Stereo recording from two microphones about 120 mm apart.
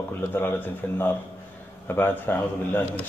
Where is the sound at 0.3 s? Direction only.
15° left (ahead or behind).